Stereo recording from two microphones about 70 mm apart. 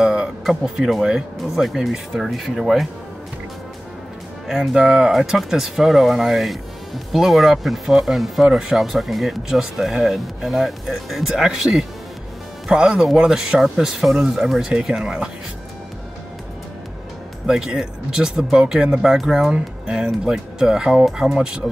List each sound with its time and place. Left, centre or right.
0.0 s music: centre
0.5 s speech: centre
4.5 s speech: centre
17.5 s speech: centre